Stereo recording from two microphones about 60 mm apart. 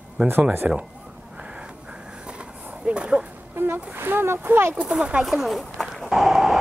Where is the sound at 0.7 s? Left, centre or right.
Centre.